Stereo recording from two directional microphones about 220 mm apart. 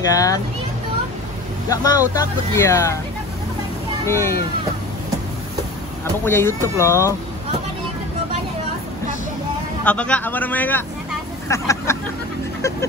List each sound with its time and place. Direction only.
0.1 s speech: 15° left (ahead or behind)
1.7 s speech: 15° left (ahead or behind)
4.0 s speech: 10° left (ahead or behind)
6.2 s speech: 10° left (ahead or behind)
9.8 s speech: 5° left (ahead or behind)